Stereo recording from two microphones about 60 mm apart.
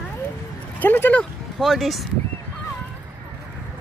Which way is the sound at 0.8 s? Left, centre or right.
Left.